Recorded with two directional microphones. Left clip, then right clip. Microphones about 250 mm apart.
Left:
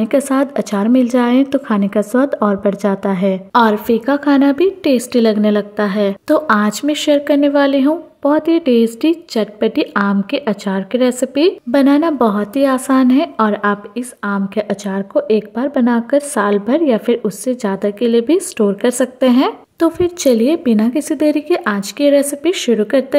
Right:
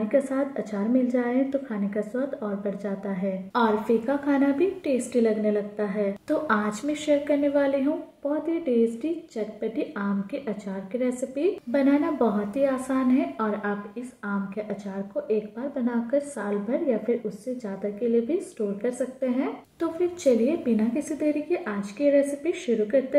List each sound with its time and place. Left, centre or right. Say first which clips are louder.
0.1 s a woman's voice: left 9 dB; left